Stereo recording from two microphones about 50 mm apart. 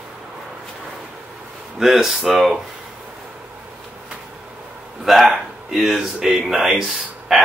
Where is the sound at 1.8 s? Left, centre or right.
Centre.